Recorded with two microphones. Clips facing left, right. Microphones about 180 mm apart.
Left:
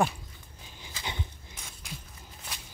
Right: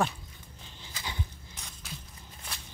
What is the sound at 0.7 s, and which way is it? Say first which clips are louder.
Dog: left 2 dB; 15° left (ahead or behind).